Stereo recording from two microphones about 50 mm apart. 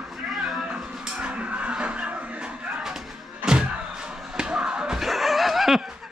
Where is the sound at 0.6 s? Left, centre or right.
Right.